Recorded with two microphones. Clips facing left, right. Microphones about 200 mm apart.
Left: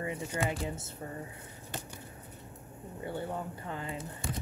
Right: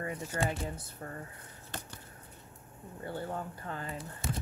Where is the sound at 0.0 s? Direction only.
10° left (ahead or behind).